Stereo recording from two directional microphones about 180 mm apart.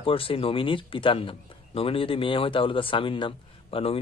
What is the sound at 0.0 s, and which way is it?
Speech, 30° left (ahead or behind).